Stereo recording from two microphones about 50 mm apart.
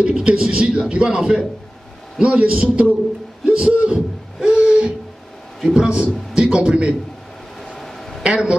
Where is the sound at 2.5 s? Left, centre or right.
Right.